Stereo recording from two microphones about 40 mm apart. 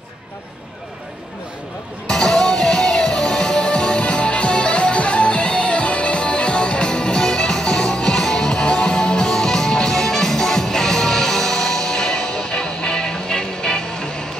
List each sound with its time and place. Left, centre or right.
2.0 s music: centre